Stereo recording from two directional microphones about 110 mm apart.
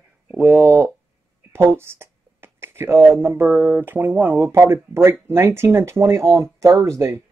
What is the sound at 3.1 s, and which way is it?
Speech, 20° right (ahead or behind).